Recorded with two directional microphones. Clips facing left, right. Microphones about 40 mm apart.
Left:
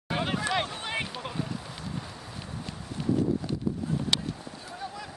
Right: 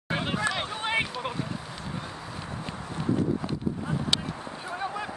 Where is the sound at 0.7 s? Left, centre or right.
Centre.